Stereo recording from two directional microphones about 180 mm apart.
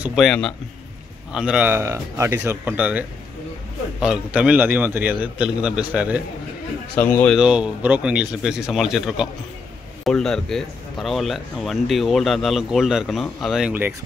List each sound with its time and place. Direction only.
0.0 s a man's voice: centre (ahead or behind)
7.0 s speech: 10° left (ahead or behind)
7.3 s speech: 5° right (ahead or behind)